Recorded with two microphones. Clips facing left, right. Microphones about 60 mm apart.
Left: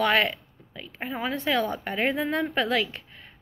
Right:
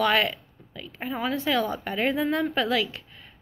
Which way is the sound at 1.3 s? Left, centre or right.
Left.